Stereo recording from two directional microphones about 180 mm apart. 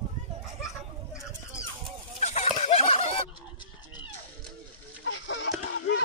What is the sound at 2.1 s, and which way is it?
Fowl, 40° left (ahead or behind).